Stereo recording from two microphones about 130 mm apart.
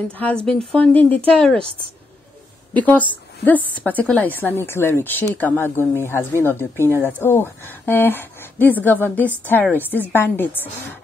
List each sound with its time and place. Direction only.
0.2 s a woman's voice: 10° left (ahead or behind)
2.7 s a woman's voice: 10° left (ahead or behind)